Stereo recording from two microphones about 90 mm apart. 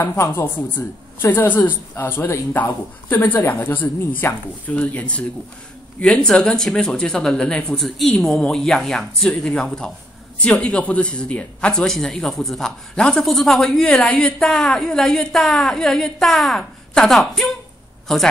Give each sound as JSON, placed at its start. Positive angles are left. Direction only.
{"t": 0.0, "sound": "a man's voice", "side_deg": 30}